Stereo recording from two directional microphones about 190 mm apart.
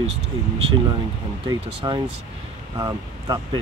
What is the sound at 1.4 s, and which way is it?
Speech, 25° right (ahead or behind).